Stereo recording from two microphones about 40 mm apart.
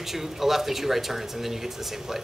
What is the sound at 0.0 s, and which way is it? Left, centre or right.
Speech, centre.